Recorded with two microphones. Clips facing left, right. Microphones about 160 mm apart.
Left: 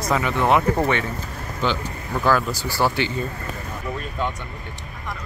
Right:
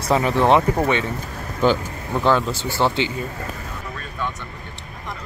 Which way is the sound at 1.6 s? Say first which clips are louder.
Right 6 dB; 45° right (ahead or behind).